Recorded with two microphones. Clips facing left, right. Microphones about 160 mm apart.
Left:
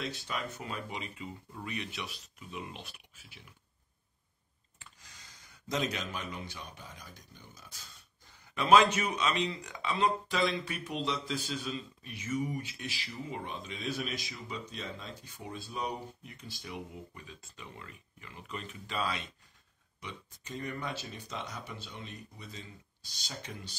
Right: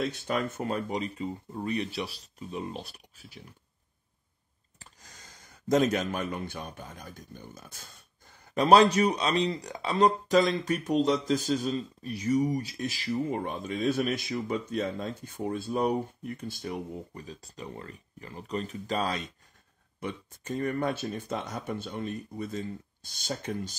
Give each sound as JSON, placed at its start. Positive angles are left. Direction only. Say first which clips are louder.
{"t": 0.3, "sound": "speech", "louder": "right 9 dB", "side_deg": -50}
{"t": 4.7, "sound": "speech", "louder": "right 4 dB", "side_deg": -40}
{"t": 8.5, "sound": "speech", "louder": "right 5 dB", "side_deg": -35}